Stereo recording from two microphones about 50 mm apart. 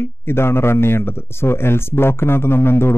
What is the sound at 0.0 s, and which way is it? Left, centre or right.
Speech, left.